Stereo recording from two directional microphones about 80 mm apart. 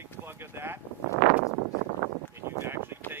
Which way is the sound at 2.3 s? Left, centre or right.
Right.